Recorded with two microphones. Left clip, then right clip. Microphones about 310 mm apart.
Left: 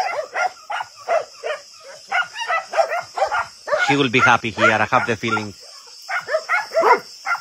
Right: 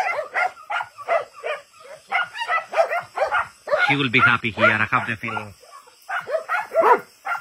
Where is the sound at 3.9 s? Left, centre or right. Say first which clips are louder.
Left 5 dB; centre.